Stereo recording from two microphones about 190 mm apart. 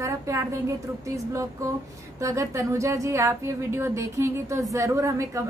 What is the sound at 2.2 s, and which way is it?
A woman's voice, 15° right (ahead or behind).